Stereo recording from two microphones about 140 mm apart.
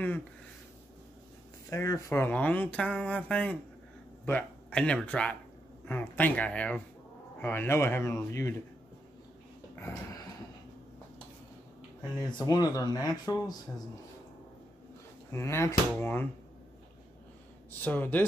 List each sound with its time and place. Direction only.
1.7 s speech: 20° left (ahead or behind)
9.8 s a sound: 15° left (ahead or behind)
12.2 s speech: 30° left (ahead or behind)
15.3 s speech: 20° left (ahead or behind)
17.8 s speech: 15° left (ahead or behind)